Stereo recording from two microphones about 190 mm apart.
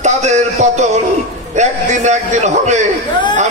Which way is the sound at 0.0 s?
35° right (ahead or behind).